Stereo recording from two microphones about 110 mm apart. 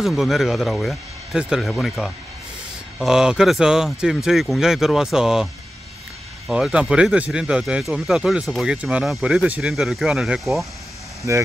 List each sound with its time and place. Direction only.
0.0 s speech: centre (ahead or behind)
11.3 s speech: 25° right (ahead or behind)